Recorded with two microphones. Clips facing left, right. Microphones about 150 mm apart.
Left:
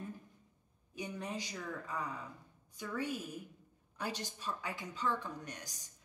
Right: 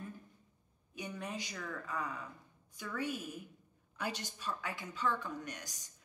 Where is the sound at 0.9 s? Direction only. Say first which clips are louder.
Left 1 dB; 30° left (ahead or behind).